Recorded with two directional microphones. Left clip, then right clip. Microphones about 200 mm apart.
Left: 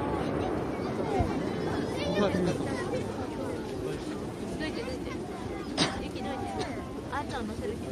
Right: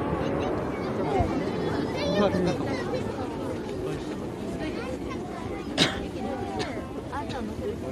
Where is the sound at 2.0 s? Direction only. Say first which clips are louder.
Right 4 dB; 45° right (ahead or behind).